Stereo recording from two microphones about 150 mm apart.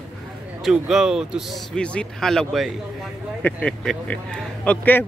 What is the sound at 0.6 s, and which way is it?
Speech, 5° right (ahead or behind).